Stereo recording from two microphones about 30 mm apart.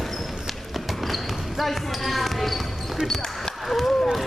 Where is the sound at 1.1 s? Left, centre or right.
Centre.